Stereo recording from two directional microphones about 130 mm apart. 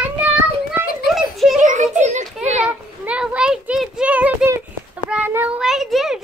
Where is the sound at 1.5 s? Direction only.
70° right (ahead or behind).